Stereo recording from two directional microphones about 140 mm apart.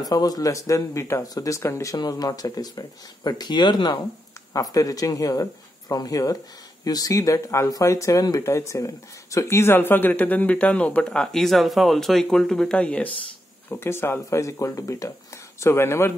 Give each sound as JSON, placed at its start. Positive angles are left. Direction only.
{"t": 0.0, "sound": "speech", "side_deg": 25}